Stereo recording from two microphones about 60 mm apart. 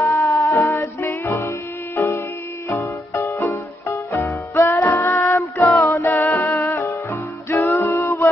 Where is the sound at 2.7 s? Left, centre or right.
Left.